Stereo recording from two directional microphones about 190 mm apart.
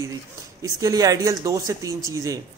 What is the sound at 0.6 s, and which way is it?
A man's voice, 20° right (ahead or behind).